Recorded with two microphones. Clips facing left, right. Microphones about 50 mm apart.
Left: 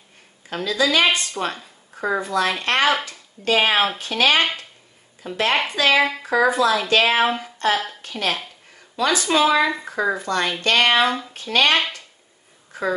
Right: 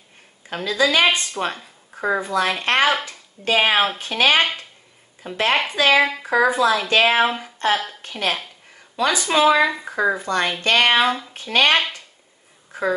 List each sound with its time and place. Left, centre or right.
0.7 s speech: right
1.4 s speech: centre; by 5.4 s right
5.7 s speech: centre
7.4 s a sound: right
7.7 s a woman's voice: centre
8.0 s a woman's voice: right
11.3 s speech: right
12.7 s a sound: right